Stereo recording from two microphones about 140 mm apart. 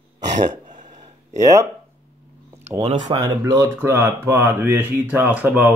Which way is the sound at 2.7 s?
55° right (ahead or behind).